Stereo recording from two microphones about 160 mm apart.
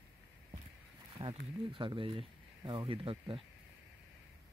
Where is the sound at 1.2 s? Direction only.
35° right (ahead or behind).